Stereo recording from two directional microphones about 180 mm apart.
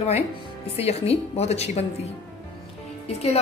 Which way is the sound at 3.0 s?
35° left (ahead or behind).